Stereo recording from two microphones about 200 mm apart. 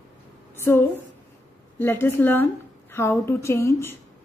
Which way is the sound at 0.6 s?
10° left (ahead or behind).